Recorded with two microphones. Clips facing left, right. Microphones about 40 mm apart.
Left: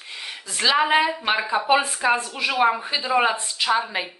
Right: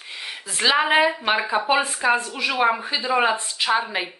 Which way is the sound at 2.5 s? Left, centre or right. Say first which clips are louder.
Left 1 dB; centre.